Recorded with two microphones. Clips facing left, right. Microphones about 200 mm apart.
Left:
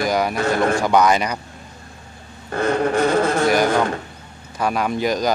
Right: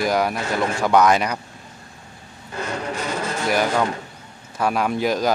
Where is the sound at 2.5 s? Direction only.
55° left (ahead or behind).